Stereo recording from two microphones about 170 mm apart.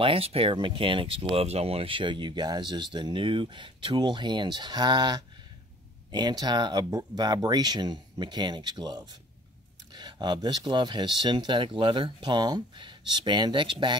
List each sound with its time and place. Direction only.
0.0 s speech: 35° right (ahead or behind)